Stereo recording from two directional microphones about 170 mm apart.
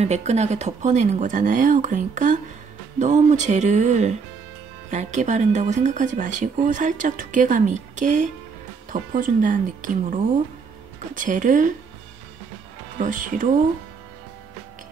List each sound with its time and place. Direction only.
0.0 s speech: 40° right (ahead or behind)
11.1 s speech: 50° right (ahead or behind)
12.9 s speech: 50° right (ahead or behind)